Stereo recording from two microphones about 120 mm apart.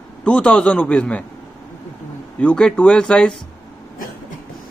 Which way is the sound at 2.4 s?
10° left (ahead or behind).